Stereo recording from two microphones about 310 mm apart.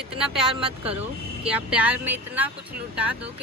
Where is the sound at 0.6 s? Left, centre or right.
Centre.